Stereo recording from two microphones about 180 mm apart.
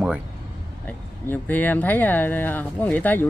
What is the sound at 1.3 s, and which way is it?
Speech, 10° left (ahead or behind).